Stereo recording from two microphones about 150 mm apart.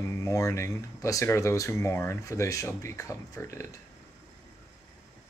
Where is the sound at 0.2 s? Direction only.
20° left (ahead or behind).